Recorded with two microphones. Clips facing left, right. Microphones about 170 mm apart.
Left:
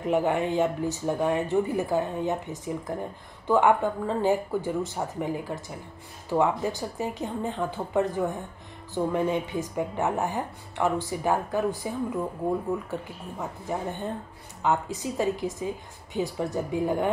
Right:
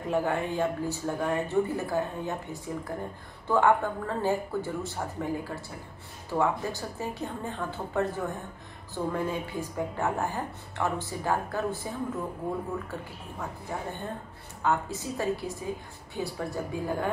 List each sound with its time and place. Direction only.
0.0 s a woman's voice: 20° left (ahead or behind)
13.4 s a woman's voice: 20° left (ahead or behind)